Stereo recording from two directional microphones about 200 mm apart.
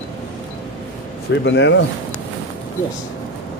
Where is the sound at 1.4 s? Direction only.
60° left (ahead or behind).